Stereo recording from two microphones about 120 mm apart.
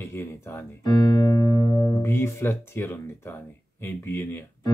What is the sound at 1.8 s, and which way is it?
Speech, 20° left (ahead or behind).